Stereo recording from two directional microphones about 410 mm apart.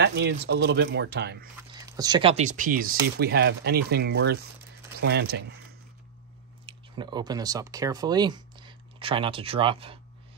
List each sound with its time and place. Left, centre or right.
0.0 s speech: right
1.7 s speech: centre
6.6 s speech: centre